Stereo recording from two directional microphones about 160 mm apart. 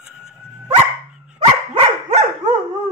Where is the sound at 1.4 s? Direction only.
40° right (ahead or behind).